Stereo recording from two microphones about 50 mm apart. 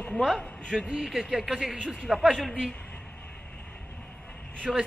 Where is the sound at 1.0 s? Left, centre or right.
Centre.